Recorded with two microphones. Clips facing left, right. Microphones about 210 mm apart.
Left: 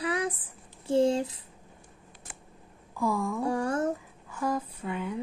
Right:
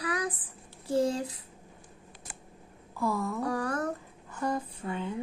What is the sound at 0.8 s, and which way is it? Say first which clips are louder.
Speech: left 4 dB; 25° left (ahead or behind).